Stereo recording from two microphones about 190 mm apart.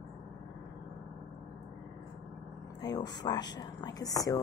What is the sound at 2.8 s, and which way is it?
Speech, 20° left (ahead or behind).